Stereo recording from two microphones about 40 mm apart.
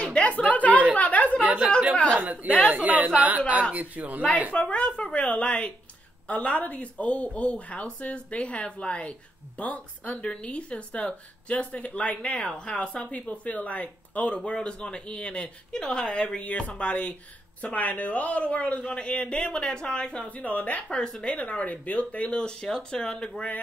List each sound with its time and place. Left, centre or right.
0.0 s a sound: left
2.1 s a woman's voice: right
4.5 s speech: left
20.3 s speech: left
20.9 s speech: centre
21.3 s speech: left
22.4 s speech: centre